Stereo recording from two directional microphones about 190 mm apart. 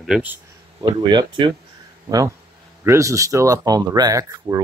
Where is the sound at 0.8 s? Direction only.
25° right (ahead or behind).